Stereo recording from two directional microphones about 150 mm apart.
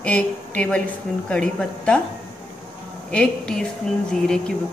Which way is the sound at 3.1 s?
5° left (ahead or behind).